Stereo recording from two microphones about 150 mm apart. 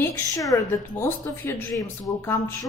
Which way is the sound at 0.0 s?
20° left (ahead or behind).